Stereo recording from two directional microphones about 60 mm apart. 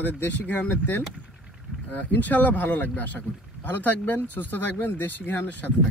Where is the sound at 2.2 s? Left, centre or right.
Left.